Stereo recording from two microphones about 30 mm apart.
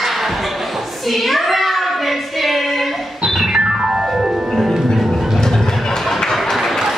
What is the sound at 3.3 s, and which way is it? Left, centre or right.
Music, centre.